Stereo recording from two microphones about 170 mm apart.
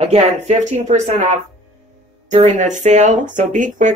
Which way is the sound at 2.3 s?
45° right (ahead or behind).